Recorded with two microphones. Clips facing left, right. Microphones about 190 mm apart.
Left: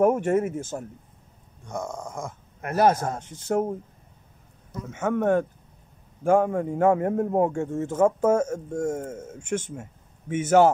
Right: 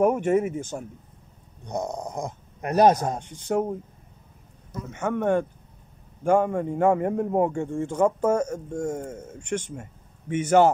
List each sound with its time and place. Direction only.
0.0 s a man's voice: centre (ahead or behind)
1.6 s speech: 20° right (ahead or behind)
3.4 s a man's voice: 5° left (ahead or behind)
4.9 s a man's voice: 5° left (ahead or behind)